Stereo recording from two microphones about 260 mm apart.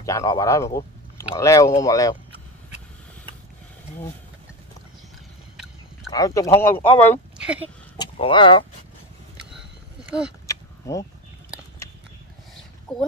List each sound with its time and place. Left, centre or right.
0.0 s speech: centre
6.1 s speech: centre
7.3 s a sound: centre
8.0 s speech: centre
10.0 s speech: centre
10.4 s a sound: centre
12.9 s speech: centre